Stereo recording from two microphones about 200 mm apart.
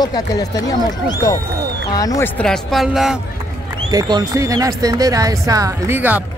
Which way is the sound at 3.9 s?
20° right (ahead or behind).